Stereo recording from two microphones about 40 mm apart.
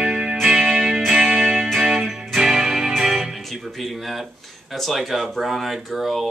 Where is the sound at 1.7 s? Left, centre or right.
Centre.